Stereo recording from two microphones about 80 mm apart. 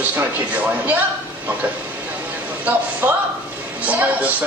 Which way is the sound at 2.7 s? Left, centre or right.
Right.